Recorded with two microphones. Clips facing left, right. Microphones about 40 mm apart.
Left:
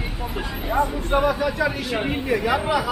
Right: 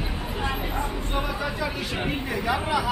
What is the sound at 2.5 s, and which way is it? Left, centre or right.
Speech, centre.